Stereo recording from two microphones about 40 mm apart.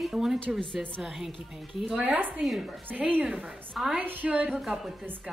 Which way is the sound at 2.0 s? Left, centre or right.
Right.